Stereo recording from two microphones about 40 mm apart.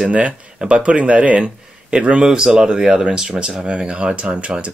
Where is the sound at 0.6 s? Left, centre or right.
Right.